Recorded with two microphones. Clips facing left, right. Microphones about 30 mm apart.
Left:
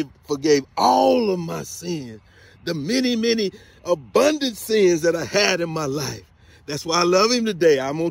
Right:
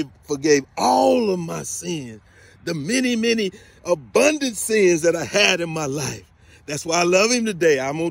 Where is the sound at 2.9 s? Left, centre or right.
Left.